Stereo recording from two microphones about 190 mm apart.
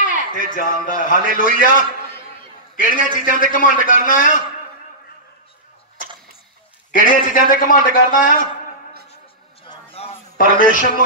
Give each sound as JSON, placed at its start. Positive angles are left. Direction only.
{"t": 0.1, "sound": "a man's voice", "side_deg": 45}
{"t": 2.7, "sound": "a man's voice", "side_deg": 45}
{"t": 6.9, "sound": "a man's voice", "side_deg": 45}
{"t": 9.7, "sound": "a sound", "side_deg": 30}
{"t": 10.3, "sound": "a man's voice", "side_deg": 50}